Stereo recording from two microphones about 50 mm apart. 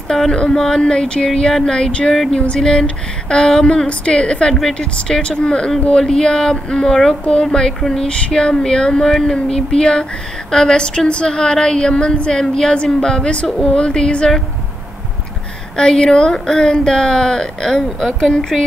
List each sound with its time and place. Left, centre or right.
0.1 s a woman's voice: centre
15.7 s a woman's voice: centre
18.5 s a sound: centre